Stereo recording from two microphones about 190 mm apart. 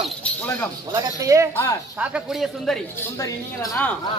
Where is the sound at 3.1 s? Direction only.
15° left (ahead or behind).